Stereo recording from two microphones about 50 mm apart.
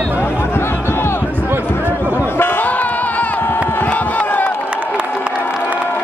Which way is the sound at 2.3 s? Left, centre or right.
Left.